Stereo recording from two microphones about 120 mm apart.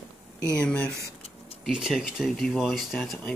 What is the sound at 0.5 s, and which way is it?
Speech, 10° left (ahead or behind).